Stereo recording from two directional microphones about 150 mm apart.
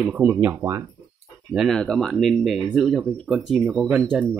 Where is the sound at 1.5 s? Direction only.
Centre (ahead or behind).